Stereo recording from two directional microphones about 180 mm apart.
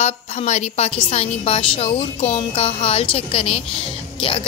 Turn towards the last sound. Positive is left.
turn(degrees=30)  # may be behind; listen again after turning